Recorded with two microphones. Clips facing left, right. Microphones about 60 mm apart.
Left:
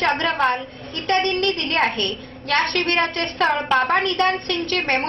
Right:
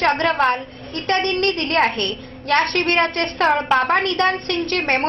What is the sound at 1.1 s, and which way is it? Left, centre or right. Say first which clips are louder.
A woman's voice: right 1 dB; right.